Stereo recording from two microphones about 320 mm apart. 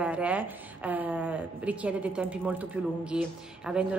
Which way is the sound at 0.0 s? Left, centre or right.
Centre.